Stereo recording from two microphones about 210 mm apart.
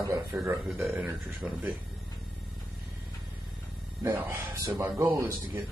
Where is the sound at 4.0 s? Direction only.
10° right (ahead or behind).